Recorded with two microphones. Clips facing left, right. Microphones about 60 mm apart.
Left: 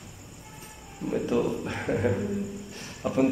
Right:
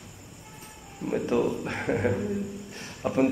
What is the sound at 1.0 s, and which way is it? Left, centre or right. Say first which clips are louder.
Speech: even; right.